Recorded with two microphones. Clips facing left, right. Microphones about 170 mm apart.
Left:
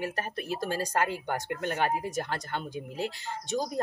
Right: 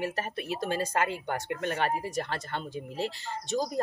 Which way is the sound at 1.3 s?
5° left (ahead or behind).